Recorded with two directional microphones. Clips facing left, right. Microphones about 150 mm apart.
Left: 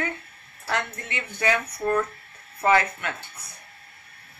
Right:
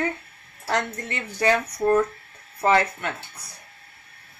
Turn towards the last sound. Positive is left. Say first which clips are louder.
# right 1 dB
turn(degrees=-35)  # may be behind; listen again after turning